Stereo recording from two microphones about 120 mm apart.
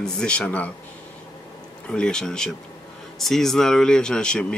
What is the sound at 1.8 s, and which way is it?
Speech, 5° left (ahead or behind).